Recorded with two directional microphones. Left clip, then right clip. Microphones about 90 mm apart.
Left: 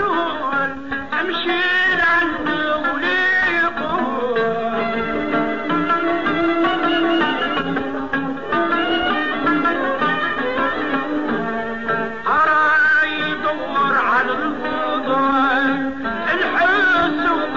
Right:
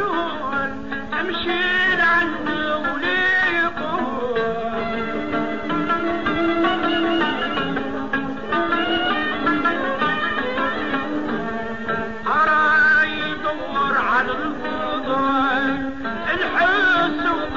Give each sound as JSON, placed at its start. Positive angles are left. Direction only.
{"t": 0.0, "sound": "music", "side_deg": 35}
{"t": 5.3, "sound": "music", "side_deg": 25}
{"t": 8.5, "sound": "music", "side_deg": 35}
{"t": 11.9, "sound": "music", "side_deg": 40}
{"t": 13.7, "sound": "a sound", "side_deg": 30}
{"t": 15.0, "sound": "music", "side_deg": 30}
{"t": 16.5, "sound": "music", "side_deg": 30}